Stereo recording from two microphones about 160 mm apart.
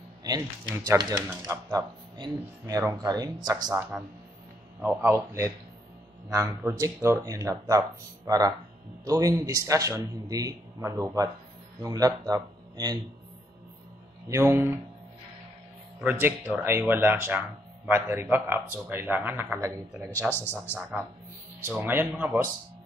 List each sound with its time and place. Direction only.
0.2 s speech: 20° right (ahead or behind)
3.9 s a man's voice: 10° right (ahead or behind)
14.3 s a man's voice: 15° right (ahead or behind)
16.0 s a man's voice: 10° right (ahead or behind)
20.2 s speech: centre (ahead or behind)
21.6 s a man's voice: 10° right (ahead or behind)